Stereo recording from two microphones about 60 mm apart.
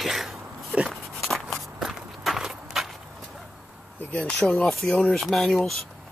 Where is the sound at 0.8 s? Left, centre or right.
Centre.